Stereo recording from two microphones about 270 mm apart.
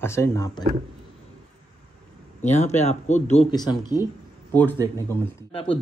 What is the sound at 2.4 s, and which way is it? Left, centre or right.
Speech, left.